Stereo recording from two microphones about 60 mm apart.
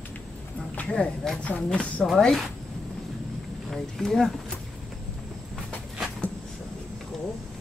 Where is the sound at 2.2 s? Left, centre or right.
Centre.